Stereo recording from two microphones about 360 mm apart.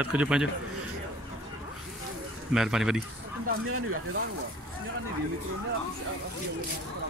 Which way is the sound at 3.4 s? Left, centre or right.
Right.